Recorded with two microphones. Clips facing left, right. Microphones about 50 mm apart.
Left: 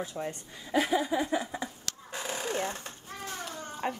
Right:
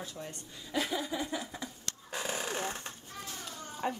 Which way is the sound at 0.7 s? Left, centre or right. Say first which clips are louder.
Left 7 dB; left.